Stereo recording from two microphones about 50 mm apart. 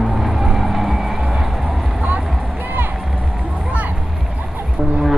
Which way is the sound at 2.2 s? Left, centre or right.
Centre.